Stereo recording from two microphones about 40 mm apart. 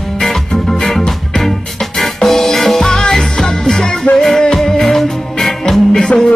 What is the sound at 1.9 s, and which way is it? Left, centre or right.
Music, centre.